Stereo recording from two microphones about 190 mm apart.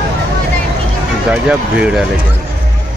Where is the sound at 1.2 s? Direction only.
5° right (ahead or behind).